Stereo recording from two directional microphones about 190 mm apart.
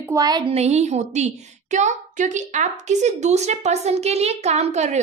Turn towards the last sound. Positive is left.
turn(degrees=-35)  # may be behind; listen again after turning